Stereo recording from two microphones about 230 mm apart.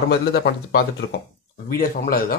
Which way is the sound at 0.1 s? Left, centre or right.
Left.